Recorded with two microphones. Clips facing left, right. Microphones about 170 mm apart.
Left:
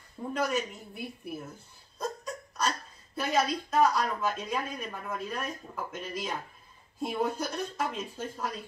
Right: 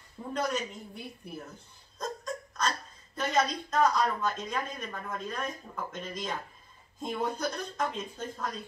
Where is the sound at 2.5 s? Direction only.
5° left (ahead or behind).